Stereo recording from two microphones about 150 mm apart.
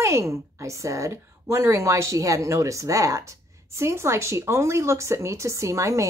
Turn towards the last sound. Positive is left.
turn(degrees=-20)  # may be behind; listen again after turning